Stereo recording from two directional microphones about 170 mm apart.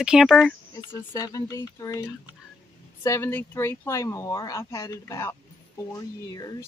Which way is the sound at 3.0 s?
15° left (ahead or behind).